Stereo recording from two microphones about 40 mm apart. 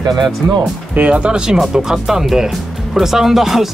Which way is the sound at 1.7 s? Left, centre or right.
Centre.